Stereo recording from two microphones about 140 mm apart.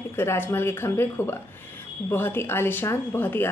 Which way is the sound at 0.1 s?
15° left (ahead or behind).